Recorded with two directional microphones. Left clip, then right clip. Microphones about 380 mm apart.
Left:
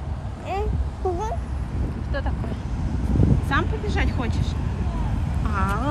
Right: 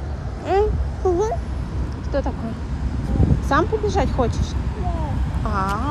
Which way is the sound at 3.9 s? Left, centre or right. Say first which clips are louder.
Right 7 dB; centre.